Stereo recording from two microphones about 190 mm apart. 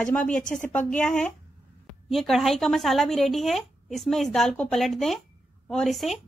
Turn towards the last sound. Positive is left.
turn(degrees=0)  # may be behind; listen again after turning